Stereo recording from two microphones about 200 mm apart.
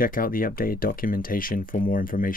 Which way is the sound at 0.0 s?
45° left (ahead or behind).